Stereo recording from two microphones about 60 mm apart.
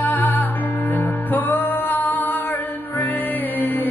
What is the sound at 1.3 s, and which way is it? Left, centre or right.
Music, left.